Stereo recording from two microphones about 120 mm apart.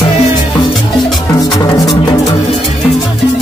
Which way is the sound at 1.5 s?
30° left (ahead or behind).